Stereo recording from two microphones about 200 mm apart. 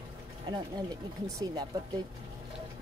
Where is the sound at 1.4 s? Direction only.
20° right (ahead or behind).